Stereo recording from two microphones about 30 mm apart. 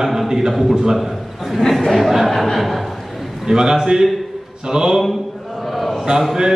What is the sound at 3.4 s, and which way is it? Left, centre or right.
A man's voice, centre.